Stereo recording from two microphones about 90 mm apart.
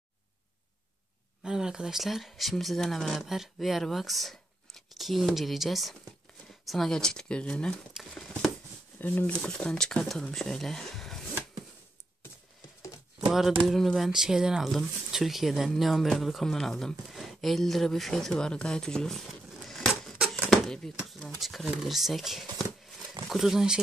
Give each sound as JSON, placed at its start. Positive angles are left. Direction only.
{"t": 1.4, "sound": "speech", "side_deg": -5}
{"t": 7.9, "sound": "speech", "side_deg": 0}
{"t": 9.0, "sound": "speech", "side_deg": 20}
{"t": 9.4, "sound": "speech", "side_deg": 10}
{"t": 13.7, "sound": "speech", "side_deg": 0}
{"t": 20.3, "sound": "a sound", "side_deg": 5}
{"t": 21.1, "sound": "speech", "side_deg": 0}